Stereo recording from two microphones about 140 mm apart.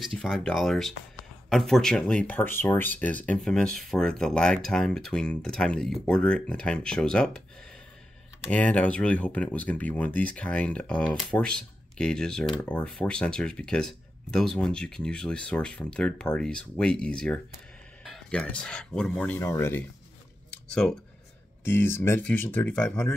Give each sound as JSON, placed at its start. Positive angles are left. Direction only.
{"t": 0.0, "sound": "speech", "side_deg": 5}
{"t": 8.5, "sound": "speech", "side_deg": 10}
{"t": 20.8, "sound": "speech", "side_deg": 10}